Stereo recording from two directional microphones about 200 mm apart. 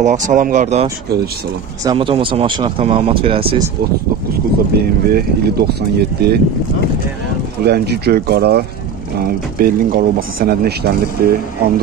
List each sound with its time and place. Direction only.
0.0 s speech: 40° right (ahead or behind)
1.9 s speech: 25° right (ahead or behind)
4.7 s speech: 50° right (ahead or behind)
7.6 s speech: 55° right (ahead or behind)